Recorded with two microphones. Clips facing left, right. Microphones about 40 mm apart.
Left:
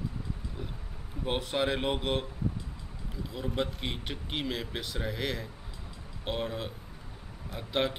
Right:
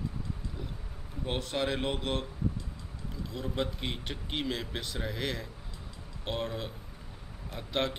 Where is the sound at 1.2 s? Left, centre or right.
Centre.